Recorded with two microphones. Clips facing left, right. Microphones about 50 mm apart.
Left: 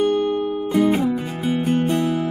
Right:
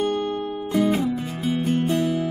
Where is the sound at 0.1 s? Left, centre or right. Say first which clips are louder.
Left 5 dB; centre.